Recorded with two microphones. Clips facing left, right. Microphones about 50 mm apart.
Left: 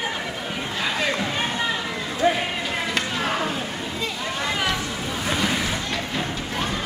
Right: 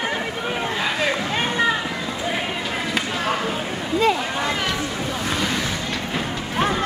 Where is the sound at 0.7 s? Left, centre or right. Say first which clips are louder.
Even; centre.